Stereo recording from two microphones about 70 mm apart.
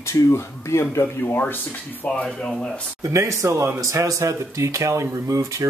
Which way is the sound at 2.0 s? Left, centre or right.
Centre.